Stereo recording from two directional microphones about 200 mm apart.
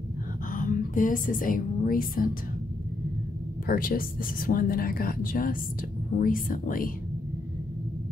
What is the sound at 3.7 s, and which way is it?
A woman's voice, 45° left (ahead or behind).